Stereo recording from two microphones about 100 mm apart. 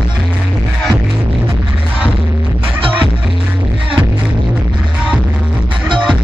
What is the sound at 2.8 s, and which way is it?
Music, 65° right (ahead or behind).